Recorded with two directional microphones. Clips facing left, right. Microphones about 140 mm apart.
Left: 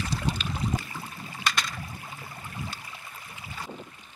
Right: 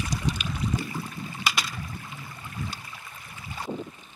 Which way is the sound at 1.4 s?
5° right (ahead or behind).